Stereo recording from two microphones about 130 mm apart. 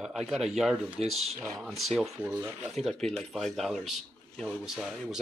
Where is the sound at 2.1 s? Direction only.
15° right (ahead or behind).